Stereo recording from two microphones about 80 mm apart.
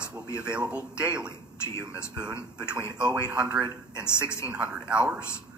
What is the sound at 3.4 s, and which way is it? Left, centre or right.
Speech, centre.